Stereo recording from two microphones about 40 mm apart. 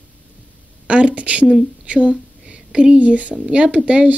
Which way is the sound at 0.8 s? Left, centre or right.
Right.